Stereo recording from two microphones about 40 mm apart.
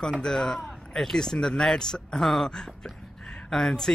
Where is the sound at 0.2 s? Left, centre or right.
Centre.